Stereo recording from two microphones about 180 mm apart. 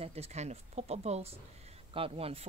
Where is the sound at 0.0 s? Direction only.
35° right (ahead or behind).